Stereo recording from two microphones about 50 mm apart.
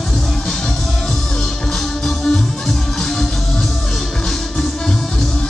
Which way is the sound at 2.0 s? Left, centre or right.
Centre.